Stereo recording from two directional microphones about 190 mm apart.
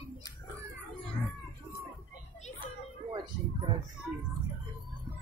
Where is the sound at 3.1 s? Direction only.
25° right (ahead or behind).